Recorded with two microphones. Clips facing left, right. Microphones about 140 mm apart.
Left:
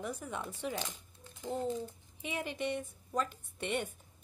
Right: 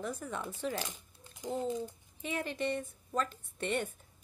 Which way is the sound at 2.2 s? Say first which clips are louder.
Right 2 dB; 15° left (ahead or behind).